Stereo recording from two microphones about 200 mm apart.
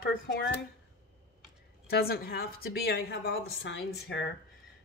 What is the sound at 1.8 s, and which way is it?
Speech, 50° left (ahead or behind).